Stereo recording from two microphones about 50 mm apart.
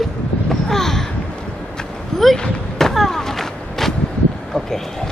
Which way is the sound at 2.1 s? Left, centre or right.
Centre.